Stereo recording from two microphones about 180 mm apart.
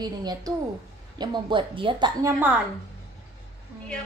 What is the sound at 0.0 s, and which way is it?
A woman's voice, 20° right (ahead or behind).